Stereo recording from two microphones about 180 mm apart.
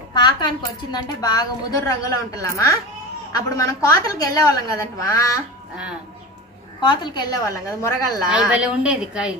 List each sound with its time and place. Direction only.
0.1 s a woman's voice: 25° left (ahead or behind)
6.8 s a woman's voice: 25° left (ahead or behind)
8.3 s a woman's voice: 5° right (ahead or behind)